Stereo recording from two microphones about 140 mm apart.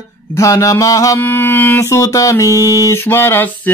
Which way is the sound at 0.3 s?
20° left (ahead or behind).